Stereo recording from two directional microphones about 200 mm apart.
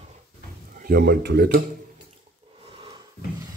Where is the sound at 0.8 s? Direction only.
55° right (ahead or behind).